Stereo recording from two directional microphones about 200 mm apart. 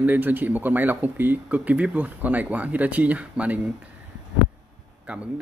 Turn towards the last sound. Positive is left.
turn(degrees=-5)  # may be behind; listen again after turning